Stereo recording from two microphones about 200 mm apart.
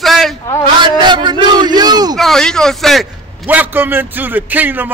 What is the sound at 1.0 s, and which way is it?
A man's voice, 20° right (ahead or behind).